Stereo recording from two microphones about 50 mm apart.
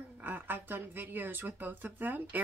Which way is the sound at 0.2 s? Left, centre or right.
Right.